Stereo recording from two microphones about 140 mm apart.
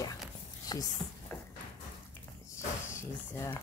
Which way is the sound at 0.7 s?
25° left (ahead or behind).